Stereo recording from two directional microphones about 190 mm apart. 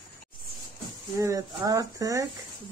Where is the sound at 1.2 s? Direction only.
15° right (ahead or behind).